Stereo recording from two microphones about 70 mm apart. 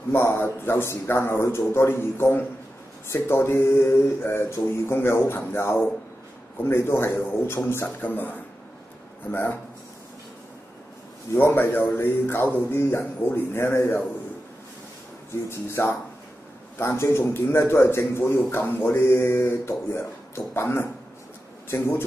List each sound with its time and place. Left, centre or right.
0.1 s a man's voice: left
8.0 s a man's voice: left
11.3 s a man's voice: left
15.5 s a man's voice: left